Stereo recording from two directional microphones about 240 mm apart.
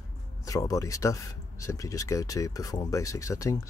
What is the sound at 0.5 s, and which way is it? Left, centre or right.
Speech, centre.